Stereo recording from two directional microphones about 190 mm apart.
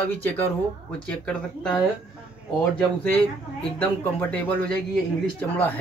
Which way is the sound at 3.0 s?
10° left (ahead or behind).